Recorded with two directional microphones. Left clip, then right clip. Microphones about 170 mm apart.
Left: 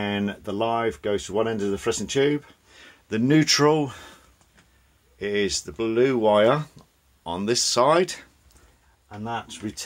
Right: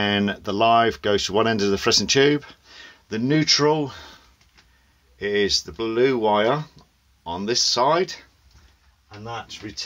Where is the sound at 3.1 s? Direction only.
15° left (ahead or behind).